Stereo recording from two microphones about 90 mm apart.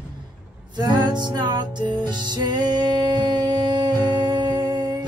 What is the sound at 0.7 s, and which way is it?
Music, 55° right (ahead or behind).